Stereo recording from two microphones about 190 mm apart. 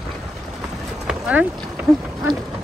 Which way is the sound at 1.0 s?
5° right (ahead or behind).